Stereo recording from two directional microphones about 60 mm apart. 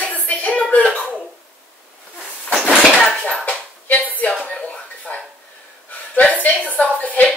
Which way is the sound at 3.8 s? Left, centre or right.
Left.